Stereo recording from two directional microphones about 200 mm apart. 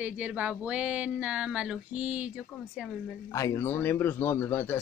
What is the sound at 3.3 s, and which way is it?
A man's voice, 15° left (ahead or behind).